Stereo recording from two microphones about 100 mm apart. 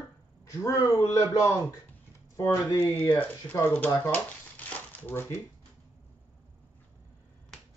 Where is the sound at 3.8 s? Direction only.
15° left (ahead or behind).